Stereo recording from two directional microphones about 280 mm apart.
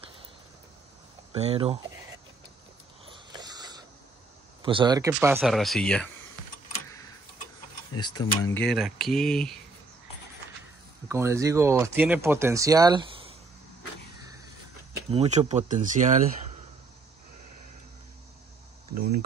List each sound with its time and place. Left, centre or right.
1.3 s speech: right
3.1 s mechanisms: centre
4.6 s speech: centre
7.9 s speech: centre
8.5 s speech: centre
11.1 s speech: centre
15.0 s speech: right
18.9 s a sound: right